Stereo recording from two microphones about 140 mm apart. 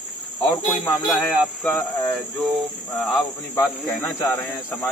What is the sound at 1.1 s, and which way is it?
Speech, 5° left (ahead or behind).